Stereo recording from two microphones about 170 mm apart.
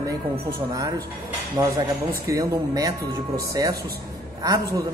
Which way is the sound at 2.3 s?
20° right (ahead or behind).